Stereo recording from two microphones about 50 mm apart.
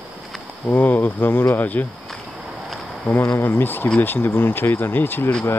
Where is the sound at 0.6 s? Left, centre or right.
Left.